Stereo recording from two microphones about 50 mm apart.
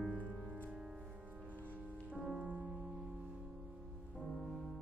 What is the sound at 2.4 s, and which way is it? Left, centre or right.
Music, right.